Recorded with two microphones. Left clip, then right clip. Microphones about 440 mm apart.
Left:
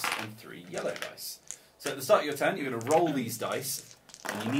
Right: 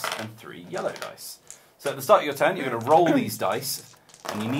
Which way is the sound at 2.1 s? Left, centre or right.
Right.